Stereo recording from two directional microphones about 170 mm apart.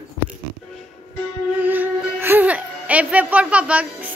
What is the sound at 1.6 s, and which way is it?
Music, 10° right (ahead or behind).